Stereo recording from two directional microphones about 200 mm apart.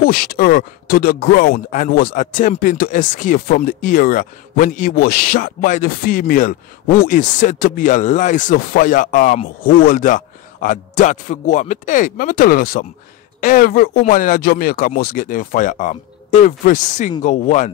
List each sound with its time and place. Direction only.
0.0 s speech: 50° left (ahead or behind)